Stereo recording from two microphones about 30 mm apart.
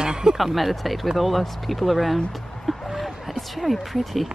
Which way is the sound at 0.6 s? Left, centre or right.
Centre.